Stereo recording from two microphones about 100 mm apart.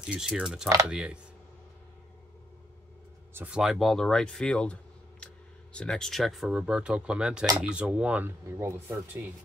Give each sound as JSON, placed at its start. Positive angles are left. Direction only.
{"t": 0.1, "sound": "speech", "side_deg": -5}
{"t": 3.4, "sound": "speech", "side_deg": -5}
{"t": 8.5, "sound": "speech", "side_deg": -30}